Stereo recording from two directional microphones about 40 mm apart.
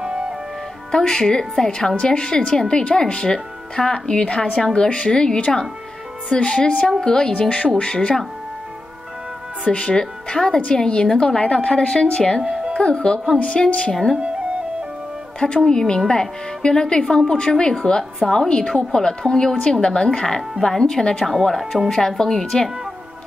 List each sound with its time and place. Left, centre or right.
0.0 s music: right
0.9 s a woman's voice: centre
7.3 s speech: left
9.7 s speech: left
15.4 s a woman's voice: centre
21.2 s a woman's voice: centre